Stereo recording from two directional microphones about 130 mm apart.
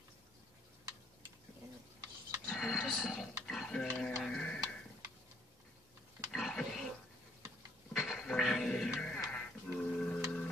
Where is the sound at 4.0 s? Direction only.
5° left (ahead or behind).